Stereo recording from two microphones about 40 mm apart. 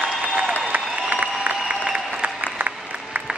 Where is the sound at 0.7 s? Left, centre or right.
Right.